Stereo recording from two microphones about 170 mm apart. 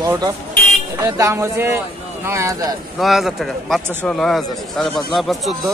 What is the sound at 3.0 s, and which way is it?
Speech, centre (ahead or behind).